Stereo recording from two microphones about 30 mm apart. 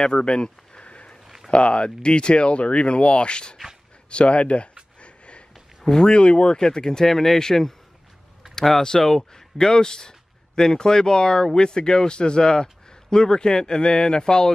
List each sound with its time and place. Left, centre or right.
0.1 s speech: left
4.1 s speech: left
5.0 s a sound: left
5.9 s speech: left